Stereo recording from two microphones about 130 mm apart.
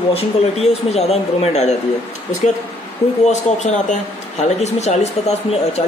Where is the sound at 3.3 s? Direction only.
65° left (ahead or behind).